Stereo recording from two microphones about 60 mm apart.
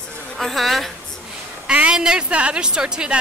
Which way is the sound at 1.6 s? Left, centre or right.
Centre.